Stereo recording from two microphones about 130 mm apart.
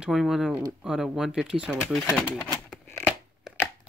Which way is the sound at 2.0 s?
20° left (ahead or behind).